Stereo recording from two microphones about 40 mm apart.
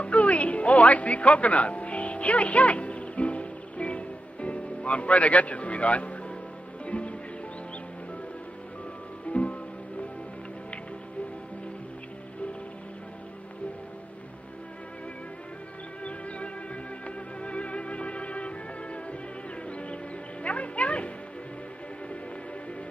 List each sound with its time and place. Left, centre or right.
0.0 s music: left
9.3 s music: left
16.0 s music: left